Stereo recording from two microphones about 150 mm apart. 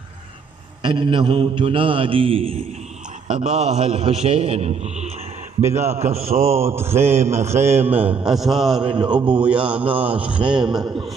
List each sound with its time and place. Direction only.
0.8 s a man's voice: 30° right (ahead or behind)
3.3 s a man's voice: 50° right (ahead or behind)
6.6 s a man's voice: 15° right (ahead or behind)
7.2 s a man's voice: 45° right (ahead or behind)
7.9 s a man's voice: 10° right (ahead or behind)
8.3 s a man's voice: centre (ahead or behind)
8.8 s a man's voice: 30° right (ahead or behind)
9.1 s a man's voice: 10° right (ahead or behind)
10.4 s a man's voice: 30° right (ahead or behind)